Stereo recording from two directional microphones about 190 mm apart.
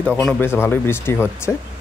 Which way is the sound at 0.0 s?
5° left (ahead or behind).